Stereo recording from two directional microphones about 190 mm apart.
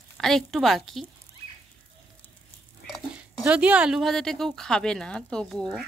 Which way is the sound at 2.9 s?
5° right (ahead or behind).